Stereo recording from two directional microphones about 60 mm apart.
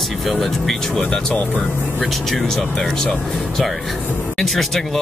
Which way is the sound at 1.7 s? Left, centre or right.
Left.